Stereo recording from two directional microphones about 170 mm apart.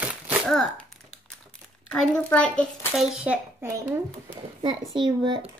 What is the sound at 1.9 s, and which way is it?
A child's voice, 5° left (ahead or behind).